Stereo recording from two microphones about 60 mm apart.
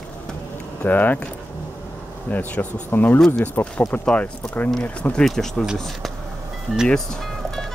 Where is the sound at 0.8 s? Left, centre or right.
Left.